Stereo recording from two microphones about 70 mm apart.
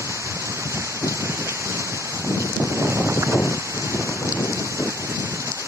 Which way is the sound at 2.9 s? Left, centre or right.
Right.